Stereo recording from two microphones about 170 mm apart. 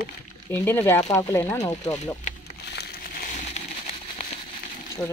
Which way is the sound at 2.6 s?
80° left.